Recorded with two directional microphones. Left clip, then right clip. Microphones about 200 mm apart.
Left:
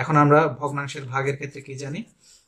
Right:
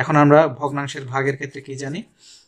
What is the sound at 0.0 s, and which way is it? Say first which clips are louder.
Speech: right 4 dB; 40° right (ahead or behind).